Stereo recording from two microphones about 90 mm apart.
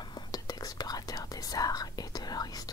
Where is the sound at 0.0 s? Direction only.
50° left (ahead or behind).